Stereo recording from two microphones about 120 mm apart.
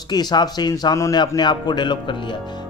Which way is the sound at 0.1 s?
35° left (ahead or behind).